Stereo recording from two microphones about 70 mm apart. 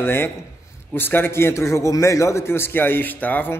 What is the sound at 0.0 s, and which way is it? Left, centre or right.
A man's voice, left.